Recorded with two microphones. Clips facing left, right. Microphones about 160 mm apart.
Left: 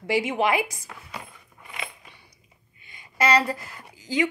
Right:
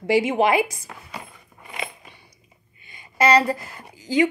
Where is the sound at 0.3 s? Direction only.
50° right (ahead or behind).